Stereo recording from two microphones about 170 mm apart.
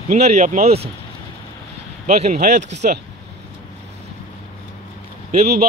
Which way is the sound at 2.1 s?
40° right (ahead or behind).